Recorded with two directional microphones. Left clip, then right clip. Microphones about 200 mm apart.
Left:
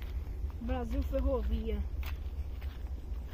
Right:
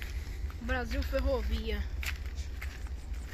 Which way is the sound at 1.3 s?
55° left (ahead or behind).